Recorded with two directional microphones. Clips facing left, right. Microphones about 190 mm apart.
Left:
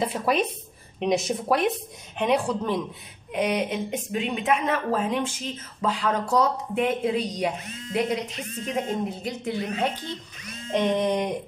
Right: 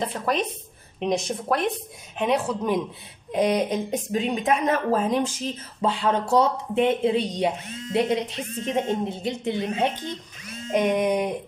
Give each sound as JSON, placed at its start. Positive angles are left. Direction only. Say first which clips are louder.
{"t": 0.0, "sound": "a woman's voice", "louder": "left 1 dB", "side_deg": 5}
{"t": 3.3, "sound": "a woman's voice", "louder": "right 3 dB", "side_deg": -35}
{"t": 5.8, "sound": "speech", "louder": "right 2 dB", "side_deg": -30}
{"t": 10.7, "sound": "a sound", "louder": "right 2 dB", "side_deg": -10}